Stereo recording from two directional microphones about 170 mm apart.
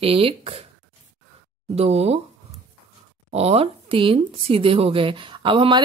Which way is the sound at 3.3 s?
35° right (ahead or behind).